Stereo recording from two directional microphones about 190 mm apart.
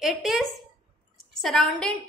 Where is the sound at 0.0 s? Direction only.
Centre (ahead or behind).